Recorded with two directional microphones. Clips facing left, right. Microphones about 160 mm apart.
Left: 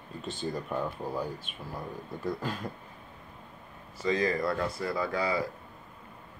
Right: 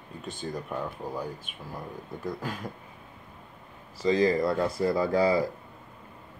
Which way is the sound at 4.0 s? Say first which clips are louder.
Right 5 dB; 30° right (ahead or behind).